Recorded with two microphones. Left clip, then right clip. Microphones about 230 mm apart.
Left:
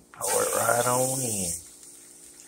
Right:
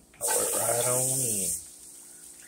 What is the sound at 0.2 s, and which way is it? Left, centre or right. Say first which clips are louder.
Pig: left 4 dB; centre.